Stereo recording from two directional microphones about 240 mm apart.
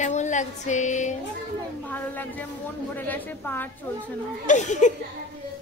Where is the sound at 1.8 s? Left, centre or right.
Centre.